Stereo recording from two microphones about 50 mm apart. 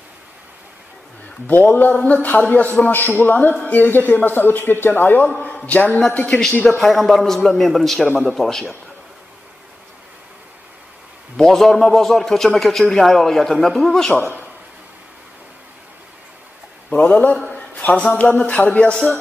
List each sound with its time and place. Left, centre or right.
1.5 s a man's voice: left
5.4 s a man's voice: left
6.8 s a man's voice: centre
11.3 s a man's voice: centre
16.9 s a man's voice: left
17.5 s a sound: left
18.1 s a man's voice: left